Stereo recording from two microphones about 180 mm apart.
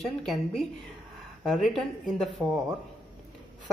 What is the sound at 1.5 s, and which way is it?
Speech, centre (ahead or behind).